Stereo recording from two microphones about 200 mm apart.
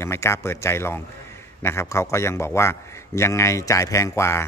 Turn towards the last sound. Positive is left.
turn(degrees=15)  # may be behind; listen again after turning